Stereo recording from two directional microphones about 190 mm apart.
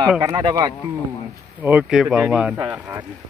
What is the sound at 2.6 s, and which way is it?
Speech, 15° right (ahead or behind).